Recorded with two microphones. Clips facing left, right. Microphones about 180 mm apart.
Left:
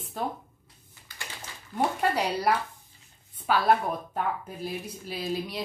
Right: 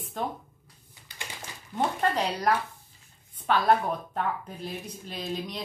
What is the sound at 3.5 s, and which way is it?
Speech, 5° left (ahead or behind).